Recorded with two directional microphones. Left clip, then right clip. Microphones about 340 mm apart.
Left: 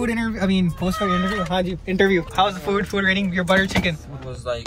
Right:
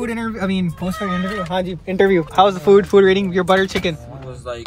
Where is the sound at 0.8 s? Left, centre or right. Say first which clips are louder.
Left 3 dB; centre.